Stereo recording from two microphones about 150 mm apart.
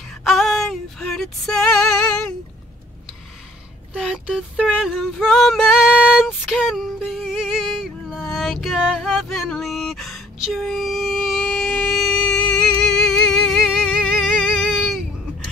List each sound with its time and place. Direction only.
0.2 s female singing: centre (ahead or behind)
4.1 s music: 5° right (ahead or behind)